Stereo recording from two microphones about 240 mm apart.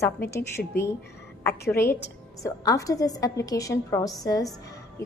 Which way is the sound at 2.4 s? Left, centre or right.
Centre.